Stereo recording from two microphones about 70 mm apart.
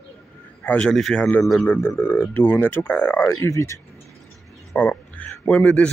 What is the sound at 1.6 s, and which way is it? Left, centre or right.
Speech, left.